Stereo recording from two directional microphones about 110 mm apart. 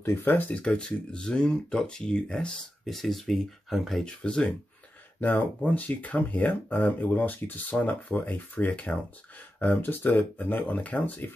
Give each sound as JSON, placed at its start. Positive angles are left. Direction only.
{"t": 0.0, "sound": "speech", "side_deg": 20}